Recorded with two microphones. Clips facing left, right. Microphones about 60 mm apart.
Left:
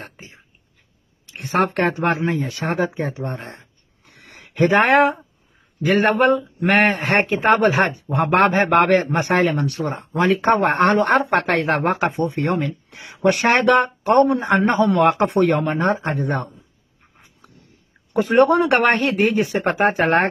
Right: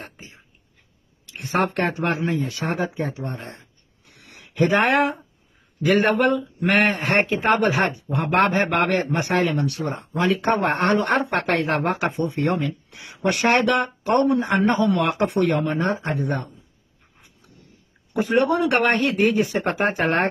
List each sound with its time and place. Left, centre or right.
0.0 s a sound: left
1.3 s speech: left
3.3 s a sound: left
5.9 s speech: left
16.2 s a man's voice: left
18.2 s speech: left